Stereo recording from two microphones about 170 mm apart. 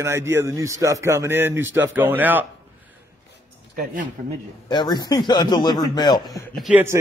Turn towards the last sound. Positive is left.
turn(degrees=-15)  # may be behind; listen again after turning